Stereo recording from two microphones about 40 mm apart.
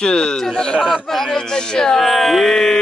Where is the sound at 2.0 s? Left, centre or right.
Centre.